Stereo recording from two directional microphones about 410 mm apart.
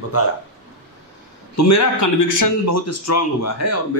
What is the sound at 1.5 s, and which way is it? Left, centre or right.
A man's voice, left.